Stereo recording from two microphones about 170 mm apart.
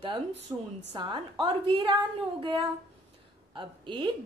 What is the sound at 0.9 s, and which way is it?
A woman's voice, 25° right (ahead or behind).